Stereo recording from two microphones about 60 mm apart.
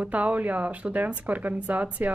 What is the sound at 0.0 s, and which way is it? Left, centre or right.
Speech, right.